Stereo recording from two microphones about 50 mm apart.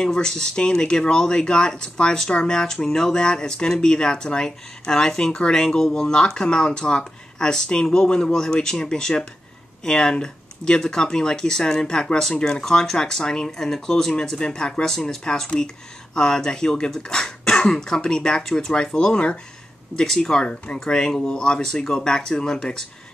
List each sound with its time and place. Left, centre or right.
0.0 s speech: centre